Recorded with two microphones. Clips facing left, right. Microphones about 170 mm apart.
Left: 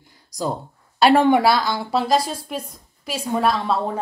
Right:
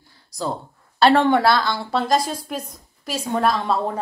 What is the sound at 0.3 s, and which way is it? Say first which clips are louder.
A woman's voice: left 1 dB; 15° left (ahead or behind).